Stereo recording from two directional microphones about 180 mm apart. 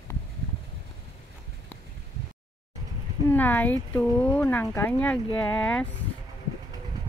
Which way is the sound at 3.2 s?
10° left (ahead or behind).